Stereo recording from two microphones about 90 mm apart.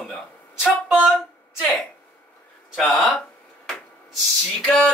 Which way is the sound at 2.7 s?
5° left (ahead or behind).